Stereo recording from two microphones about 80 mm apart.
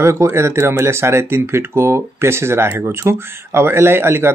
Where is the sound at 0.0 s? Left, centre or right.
Right.